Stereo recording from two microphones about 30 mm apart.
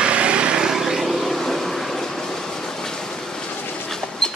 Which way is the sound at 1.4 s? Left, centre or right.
Centre.